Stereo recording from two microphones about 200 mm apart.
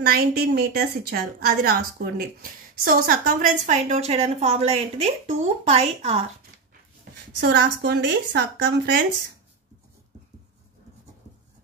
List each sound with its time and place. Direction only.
0.0 s a woman's voice: 50° right (ahead or behind); by 6.2 s 30° right (ahead or behind)
7.3 s a woman's voice: 55° right (ahead or behind)